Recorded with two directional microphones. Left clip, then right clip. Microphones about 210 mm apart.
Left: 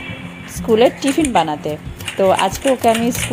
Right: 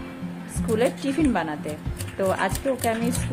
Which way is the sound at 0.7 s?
25° left (ahead or behind).